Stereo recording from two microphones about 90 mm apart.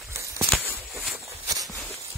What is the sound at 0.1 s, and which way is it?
Walk, 35° right (ahead or behind).